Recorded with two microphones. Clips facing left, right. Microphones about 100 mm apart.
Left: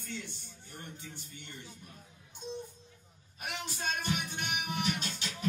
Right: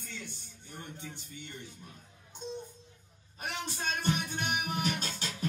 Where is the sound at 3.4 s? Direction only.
35° right (ahead or behind).